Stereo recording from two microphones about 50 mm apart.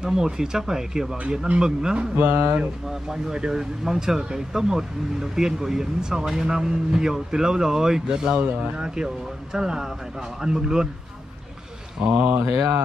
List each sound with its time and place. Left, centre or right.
0.0 s speech: centre
2.1 s speech: right
2.9 s speech: centre
12.0 s speech: right